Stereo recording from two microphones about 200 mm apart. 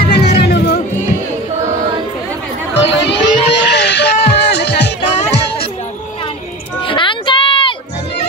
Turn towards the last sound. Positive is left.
turn(degrees=25)  # may be behind; listen again after turning